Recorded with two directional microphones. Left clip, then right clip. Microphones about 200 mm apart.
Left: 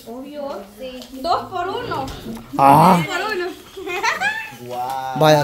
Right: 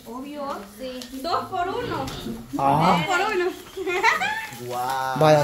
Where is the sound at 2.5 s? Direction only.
40° left (ahead or behind).